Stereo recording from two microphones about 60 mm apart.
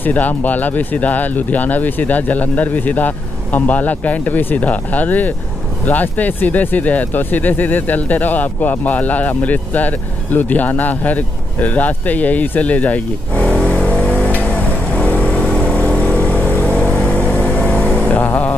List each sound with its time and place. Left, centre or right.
0.0 s speech: left
13.7 s a sound: centre
15.0 s vehicle: left
18.1 s music: left